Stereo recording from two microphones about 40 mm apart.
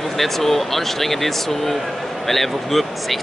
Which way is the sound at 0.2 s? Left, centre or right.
Centre.